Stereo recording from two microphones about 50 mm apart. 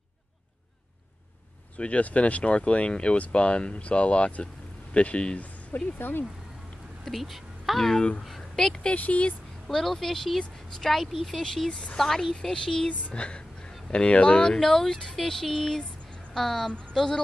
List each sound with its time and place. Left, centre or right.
1.8 s speech: left
5.9 s speech: left
7.1 s speech: centre
8.9 s speech: left
9.7 s a woman's voice: centre
11.7 s speech: left
12.0 s a woman's voice: centre